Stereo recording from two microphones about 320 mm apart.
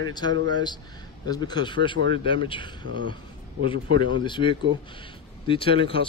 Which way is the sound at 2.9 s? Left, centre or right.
Right.